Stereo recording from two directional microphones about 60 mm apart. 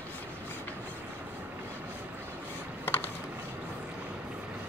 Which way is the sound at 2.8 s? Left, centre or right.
Left.